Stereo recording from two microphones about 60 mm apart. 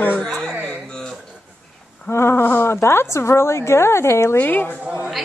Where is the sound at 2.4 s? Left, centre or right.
Left.